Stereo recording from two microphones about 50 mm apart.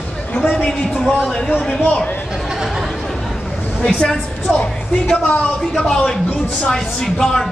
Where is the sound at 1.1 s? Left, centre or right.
Centre.